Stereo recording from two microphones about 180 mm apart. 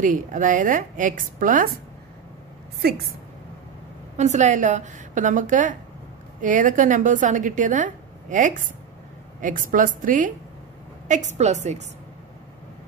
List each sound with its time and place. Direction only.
0.0 s a woman's voice: 45° right (ahead or behind)
4.2 s a woman's voice: 40° right (ahead or behind)